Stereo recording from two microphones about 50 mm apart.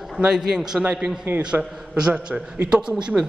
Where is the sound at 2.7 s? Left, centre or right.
Centre.